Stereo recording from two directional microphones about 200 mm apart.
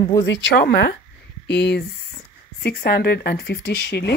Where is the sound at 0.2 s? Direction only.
60° left (ahead or behind).